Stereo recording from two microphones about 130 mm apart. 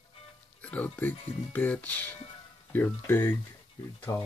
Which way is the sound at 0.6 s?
10° left (ahead or behind).